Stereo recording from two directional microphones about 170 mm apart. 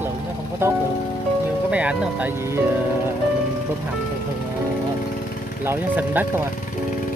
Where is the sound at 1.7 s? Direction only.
5° right (ahead or behind).